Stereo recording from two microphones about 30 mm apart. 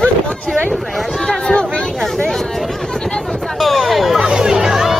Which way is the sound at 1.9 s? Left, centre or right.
Centre.